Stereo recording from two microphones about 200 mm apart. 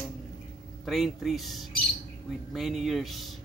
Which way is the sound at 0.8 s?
Centre (ahead or behind).